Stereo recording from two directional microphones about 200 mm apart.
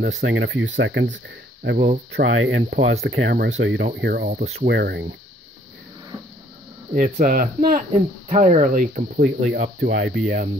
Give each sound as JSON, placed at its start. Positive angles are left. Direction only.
{"t": 0.2, "sound": "speech", "side_deg": -65}
{"t": 2.1, "sound": "speech", "side_deg": -75}
{"t": 2.7, "sound": "speech", "side_deg": -60}
{"t": 6.9, "sound": "speech", "side_deg": -50}
{"t": 9.5, "sound": "speech", "side_deg": -60}